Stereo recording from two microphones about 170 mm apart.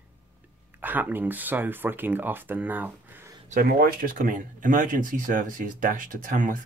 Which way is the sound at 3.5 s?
60° right (ahead or behind).